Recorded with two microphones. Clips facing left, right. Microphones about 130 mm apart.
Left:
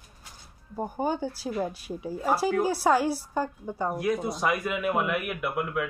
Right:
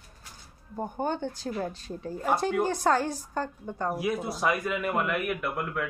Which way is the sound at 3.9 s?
5° right (ahead or behind).